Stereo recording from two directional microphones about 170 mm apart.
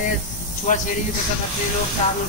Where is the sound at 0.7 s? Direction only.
50° left (ahead or behind).